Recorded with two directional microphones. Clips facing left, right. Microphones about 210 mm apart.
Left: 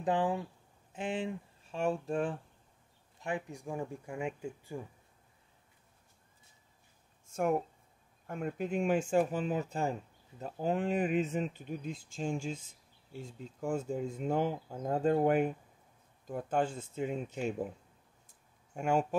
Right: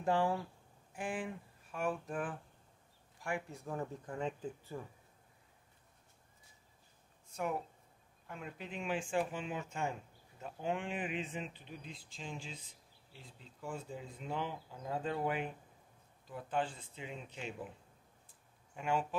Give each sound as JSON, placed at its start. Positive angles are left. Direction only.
{"t": 0.0, "sound": "speech", "side_deg": 20}
{"t": 7.2, "sound": "speech", "side_deg": 45}
{"t": 18.8, "sound": "speech", "side_deg": 45}